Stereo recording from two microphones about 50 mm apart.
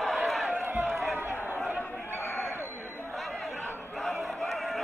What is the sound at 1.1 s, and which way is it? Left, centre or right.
Chatter, right.